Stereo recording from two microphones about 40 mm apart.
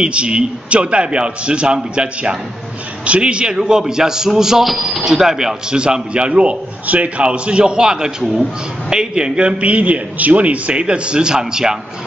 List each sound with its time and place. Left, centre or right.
0.0 s a man's voice: right
4.6 s a man's voice: centre
5.7 s a man's voice: right